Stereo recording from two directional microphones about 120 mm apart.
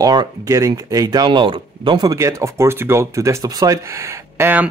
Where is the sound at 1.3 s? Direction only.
45° right (ahead or behind).